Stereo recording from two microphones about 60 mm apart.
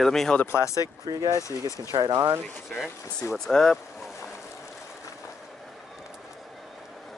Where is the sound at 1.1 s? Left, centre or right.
Right.